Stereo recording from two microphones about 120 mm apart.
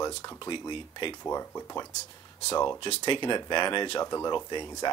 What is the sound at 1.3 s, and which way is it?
Speech, 25° left (ahead or behind).